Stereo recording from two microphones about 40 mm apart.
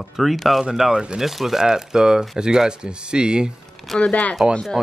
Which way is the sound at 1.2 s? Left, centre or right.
Centre.